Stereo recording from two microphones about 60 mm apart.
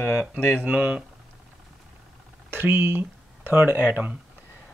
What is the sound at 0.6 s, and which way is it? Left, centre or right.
Speech, right.